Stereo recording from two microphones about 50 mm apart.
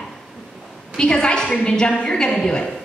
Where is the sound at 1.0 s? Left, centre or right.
Centre.